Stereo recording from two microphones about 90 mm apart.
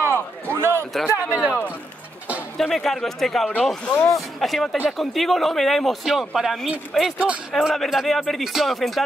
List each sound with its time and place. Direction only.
0.0 s run: 25° right (ahead or behind)
1.1 s speech: 15° right (ahead or behind)
2.5 s speech: 5° left (ahead or behind)